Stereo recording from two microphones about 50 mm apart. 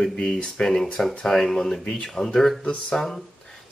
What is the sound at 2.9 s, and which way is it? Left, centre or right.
Speech, centre.